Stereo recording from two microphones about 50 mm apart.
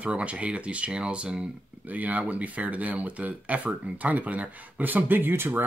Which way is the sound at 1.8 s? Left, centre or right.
Right.